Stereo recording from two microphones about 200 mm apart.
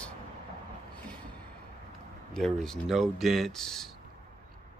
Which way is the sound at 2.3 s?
5° left (ahead or behind).